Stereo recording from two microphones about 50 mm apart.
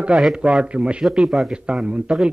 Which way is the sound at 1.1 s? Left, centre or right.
Centre.